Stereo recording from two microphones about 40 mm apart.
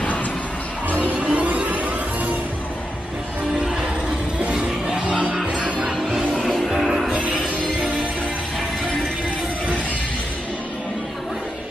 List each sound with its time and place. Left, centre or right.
1.3 s music: right
4.6 s music: centre
5.9 s music: centre
6.3 s music: centre